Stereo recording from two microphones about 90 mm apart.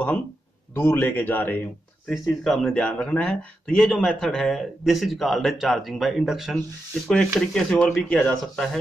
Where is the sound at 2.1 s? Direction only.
Centre (ahead or behind).